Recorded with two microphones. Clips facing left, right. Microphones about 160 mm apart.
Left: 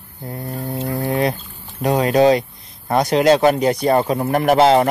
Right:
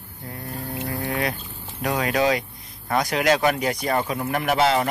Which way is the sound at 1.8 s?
30° left (ahead or behind).